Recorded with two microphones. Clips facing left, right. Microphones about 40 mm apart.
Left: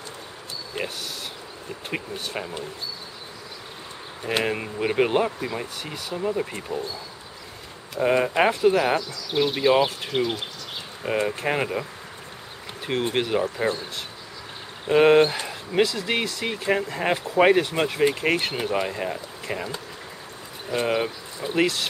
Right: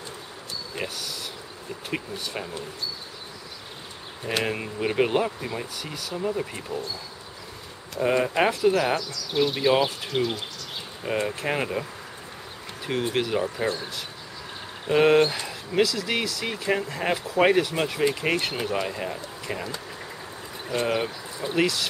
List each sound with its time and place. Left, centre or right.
0.8 s speech: left
2.3 s speech: centre
4.2 s speech: centre
7.9 s speech: centre
12.8 s speech: left
14.9 s speech: centre
15.8 s speech: left; by 21.5 s centre